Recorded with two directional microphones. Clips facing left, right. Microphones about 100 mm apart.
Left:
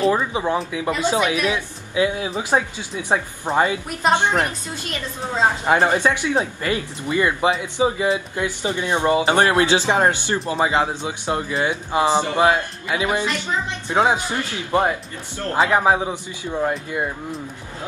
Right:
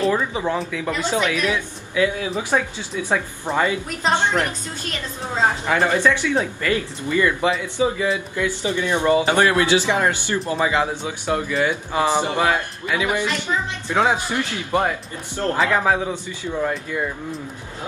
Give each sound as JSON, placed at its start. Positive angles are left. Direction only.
{"t": 0.0, "sound": "speech", "side_deg": 20}
{"t": 5.7, "sound": "speech", "side_deg": 25}